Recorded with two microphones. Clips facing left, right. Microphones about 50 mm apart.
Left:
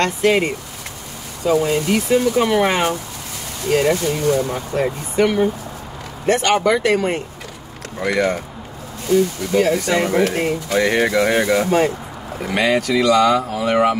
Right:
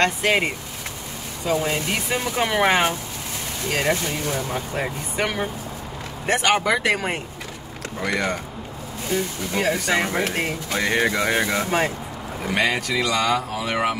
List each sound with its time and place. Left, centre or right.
0.0 s speech: centre
8.0 s speech: centre
9.1 s speech: centre
10.7 s speech: centre